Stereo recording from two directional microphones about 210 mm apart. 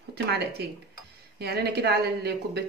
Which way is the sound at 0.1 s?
50° right (ahead or behind).